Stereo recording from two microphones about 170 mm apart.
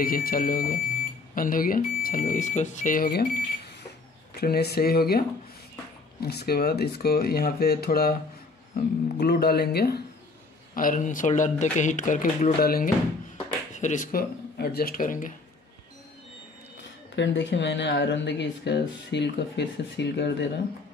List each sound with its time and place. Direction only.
0.0 s speech: 55° left (ahead or behind)
4.4 s speech: 65° left (ahead or behind)
6.2 s speech: 65° left (ahead or behind)
10.7 s speech: 55° left (ahead or behind)
12.6 s speech: 60° left (ahead or behind)
13.7 s speech: 45° left (ahead or behind)
14.1 s speech: 65° left (ahead or behind)
17.1 s speech: 90° left